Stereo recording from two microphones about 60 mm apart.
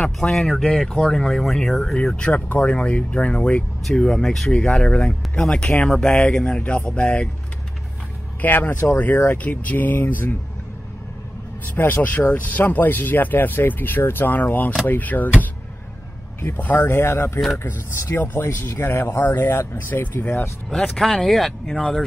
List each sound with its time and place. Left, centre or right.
0.0 s speech: centre
1.3 s speech: centre; by 3.6 s left
3.9 s speech: centre
8.4 s speech: left
11.6 s speech: left
16.5 s speech: left
16.8 s speech: left
18.2 s speech: left
20.9 s speech: centre